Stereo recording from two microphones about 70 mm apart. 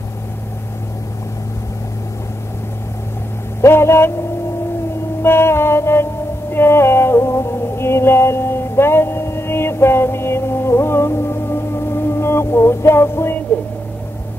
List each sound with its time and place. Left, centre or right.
3.6 s speech: left
5.2 s music: left
13.5 s a sound: left